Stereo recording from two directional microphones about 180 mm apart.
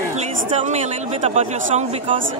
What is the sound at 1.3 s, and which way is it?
Speech, 35° right (ahead or behind).